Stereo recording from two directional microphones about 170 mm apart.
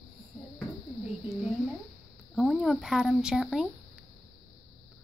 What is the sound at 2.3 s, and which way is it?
Speech, centre (ahead or behind).